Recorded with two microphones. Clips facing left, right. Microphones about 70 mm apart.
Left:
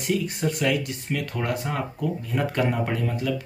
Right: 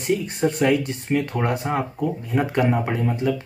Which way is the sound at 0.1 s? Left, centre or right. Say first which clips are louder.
Right 4 dB; right.